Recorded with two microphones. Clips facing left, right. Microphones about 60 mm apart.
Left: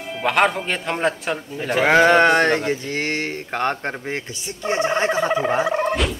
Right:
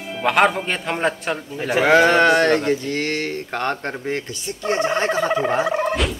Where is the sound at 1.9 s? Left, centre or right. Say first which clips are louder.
Even; centre.